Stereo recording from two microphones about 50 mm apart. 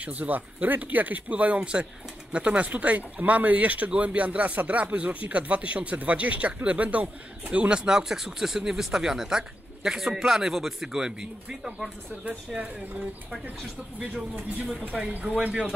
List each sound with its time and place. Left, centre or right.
0.0 s speech: right; by 11.7 s centre
13.9 s speech: right